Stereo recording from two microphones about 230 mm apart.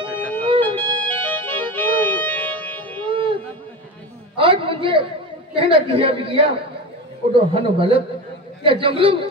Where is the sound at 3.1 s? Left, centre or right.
Right.